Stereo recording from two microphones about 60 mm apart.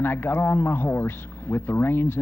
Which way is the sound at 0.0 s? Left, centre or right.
Left.